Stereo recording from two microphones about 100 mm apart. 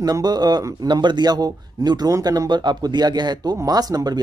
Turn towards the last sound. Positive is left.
turn(degrees=-40)  # may be behind; listen again after turning